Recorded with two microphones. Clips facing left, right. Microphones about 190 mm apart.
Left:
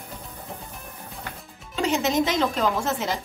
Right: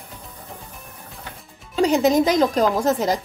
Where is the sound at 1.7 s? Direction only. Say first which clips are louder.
Right 6 dB; 35° right (ahead or behind).